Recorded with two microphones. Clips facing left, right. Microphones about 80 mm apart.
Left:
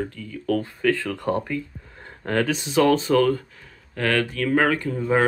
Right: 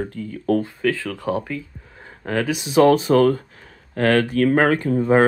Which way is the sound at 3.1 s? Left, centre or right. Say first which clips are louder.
Right 3 dB; right.